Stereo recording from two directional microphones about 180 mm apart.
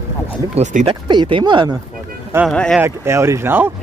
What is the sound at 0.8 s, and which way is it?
Speech, 25° right (ahead or behind).